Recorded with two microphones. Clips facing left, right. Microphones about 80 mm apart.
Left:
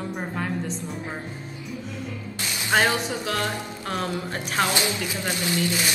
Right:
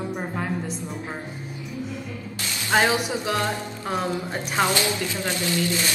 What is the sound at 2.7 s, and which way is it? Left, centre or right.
Speech, centre.